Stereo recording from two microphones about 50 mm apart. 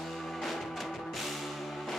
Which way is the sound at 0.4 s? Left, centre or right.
Centre.